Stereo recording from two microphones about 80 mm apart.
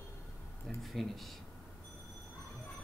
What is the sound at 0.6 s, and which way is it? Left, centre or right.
Speech, centre.